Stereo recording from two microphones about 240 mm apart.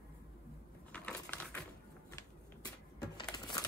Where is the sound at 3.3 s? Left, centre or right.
Centre.